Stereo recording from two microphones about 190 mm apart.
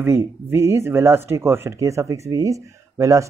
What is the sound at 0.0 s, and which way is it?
Speech, 10° right (ahead or behind).